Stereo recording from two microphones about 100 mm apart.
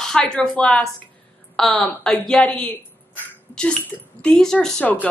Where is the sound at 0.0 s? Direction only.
5° left (ahead or behind).